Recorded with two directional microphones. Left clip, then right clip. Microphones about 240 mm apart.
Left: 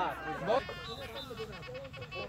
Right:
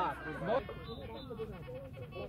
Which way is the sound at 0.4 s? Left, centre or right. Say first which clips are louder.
Left 4 dB; left.